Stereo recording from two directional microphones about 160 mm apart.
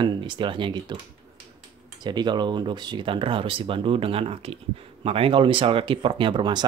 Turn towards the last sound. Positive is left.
turn(degrees=-30)  # may be behind; listen again after turning